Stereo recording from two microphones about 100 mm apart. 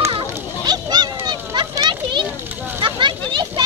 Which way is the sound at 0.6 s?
45° right (ahead or behind).